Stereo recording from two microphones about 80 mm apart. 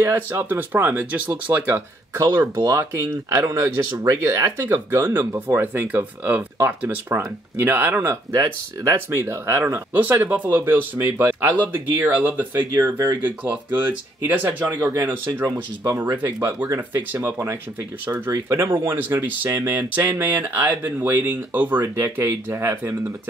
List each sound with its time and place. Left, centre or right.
0.0 s speech: right
2.1 s speech: right
5.0 s speech: right
9.9 s speech: right
15.4 s speech: right
17.1 s speech: right